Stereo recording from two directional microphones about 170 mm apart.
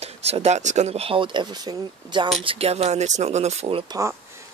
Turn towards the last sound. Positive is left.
turn(degrees=-25)  # may be behind; listen again after turning